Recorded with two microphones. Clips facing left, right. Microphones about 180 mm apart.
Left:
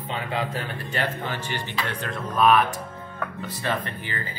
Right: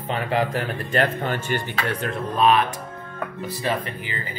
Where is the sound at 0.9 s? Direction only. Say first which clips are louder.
Right 6 dB; 50° right (ahead or behind).